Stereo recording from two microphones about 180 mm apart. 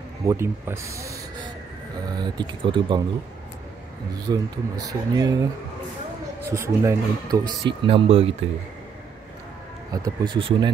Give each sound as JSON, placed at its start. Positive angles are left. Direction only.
{"t": 0.3, "sound": "speech", "side_deg": -15}
{"t": 4.3, "sound": "speech", "side_deg": -20}
{"t": 6.5, "sound": "speech", "side_deg": -15}
{"t": 7.8, "sound": "speech", "side_deg": -30}
{"t": 10.0, "sound": "speech", "side_deg": -25}